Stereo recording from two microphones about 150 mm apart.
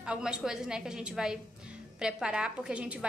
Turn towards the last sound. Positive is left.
turn(degrees=-10)  # may be behind; listen again after turning